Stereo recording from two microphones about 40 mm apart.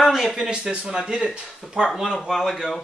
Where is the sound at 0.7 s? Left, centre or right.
Right.